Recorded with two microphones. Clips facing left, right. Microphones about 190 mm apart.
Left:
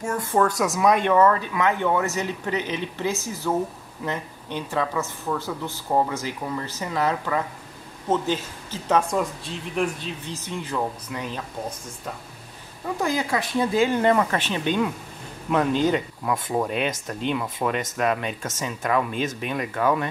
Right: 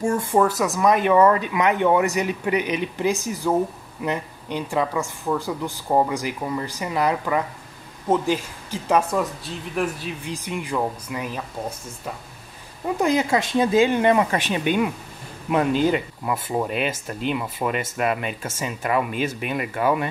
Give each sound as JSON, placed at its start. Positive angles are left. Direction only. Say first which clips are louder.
{"t": 0.3, "sound": "speech", "louder": "left 1 dB", "side_deg": -5}
{"t": 12.8, "sound": "speech", "louder": "right 4 dB", "side_deg": -20}